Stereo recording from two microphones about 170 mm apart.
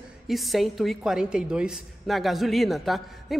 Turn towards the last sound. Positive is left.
turn(degrees=0)  # may be behind; listen again after turning